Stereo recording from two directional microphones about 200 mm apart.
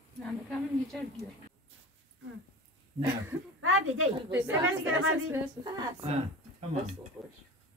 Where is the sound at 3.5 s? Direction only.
90° right.